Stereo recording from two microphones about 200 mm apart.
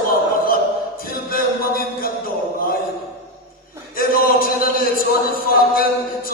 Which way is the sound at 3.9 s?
45° left (ahead or behind).